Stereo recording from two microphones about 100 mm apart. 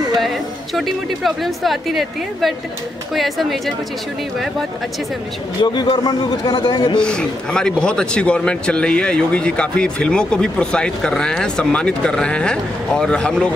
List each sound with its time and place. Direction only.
0.7 s a woman's voice: centre (ahead or behind)
5.6 s a man's voice: 50° left (ahead or behind)
7.0 s speech: 10° left (ahead or behind)